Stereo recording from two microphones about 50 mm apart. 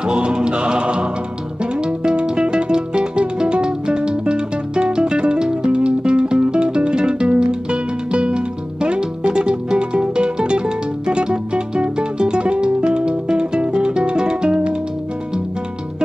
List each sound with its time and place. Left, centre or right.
0.0 s music: centre